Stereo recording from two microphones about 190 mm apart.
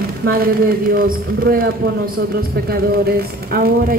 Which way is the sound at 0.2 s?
50° right (ahead or behind).